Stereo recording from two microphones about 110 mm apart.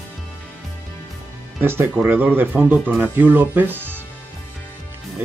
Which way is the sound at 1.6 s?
20° right (ahead or behind).